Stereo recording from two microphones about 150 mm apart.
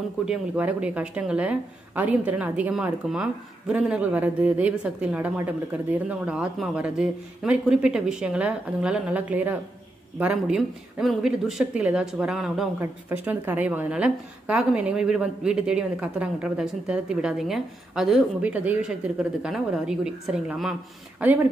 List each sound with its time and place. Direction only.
0.2 s a woman's voice: 5° right (ahead or behind)